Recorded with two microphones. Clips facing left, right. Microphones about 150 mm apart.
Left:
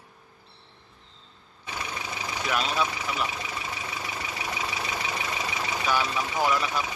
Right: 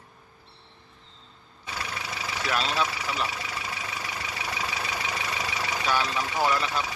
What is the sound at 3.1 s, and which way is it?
Vehicle, 20° left (ahead or behind).